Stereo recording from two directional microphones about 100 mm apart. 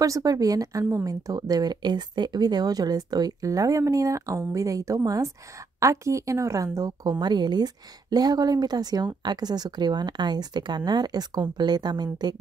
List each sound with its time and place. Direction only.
0.0 s a woman's voice: 35° right (ahead or behind)